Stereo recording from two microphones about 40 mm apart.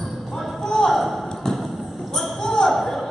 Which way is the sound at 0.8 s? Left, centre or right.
Centre.